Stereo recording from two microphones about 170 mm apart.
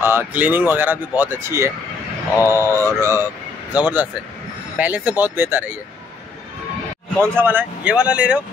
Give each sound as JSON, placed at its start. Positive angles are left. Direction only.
{"t": 0.0, "sound": "speech", "side_deg": -10}
{"t": 7.3, "sound": "speech", "side_deg": -10}